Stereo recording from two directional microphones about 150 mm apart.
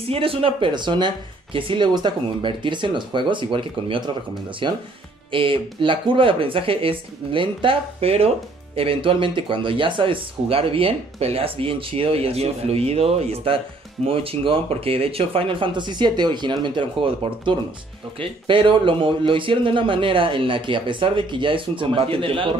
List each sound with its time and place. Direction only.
0.1 s speech: 40° right (ahead or behind)